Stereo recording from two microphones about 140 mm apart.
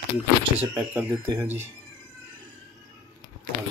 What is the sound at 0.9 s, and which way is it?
Speech, 20° right (ahead or behind).